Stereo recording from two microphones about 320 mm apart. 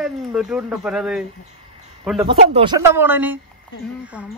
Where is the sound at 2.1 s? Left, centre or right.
Centre.